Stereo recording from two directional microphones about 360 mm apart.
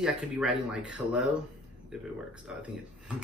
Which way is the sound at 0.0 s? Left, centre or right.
Centre.